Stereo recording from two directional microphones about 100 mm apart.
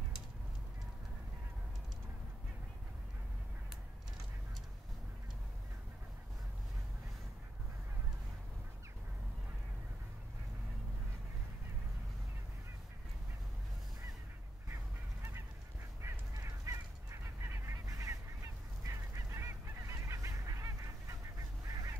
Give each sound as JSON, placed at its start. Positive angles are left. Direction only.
{"t": 16.0, "sound": "goose", "side_deg": -30}
{"t": 21.4, "sound": "honk", "side_deg": -35}